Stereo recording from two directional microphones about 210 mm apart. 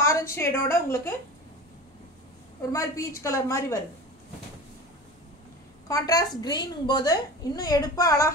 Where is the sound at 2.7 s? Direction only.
15° left (ahead or behind).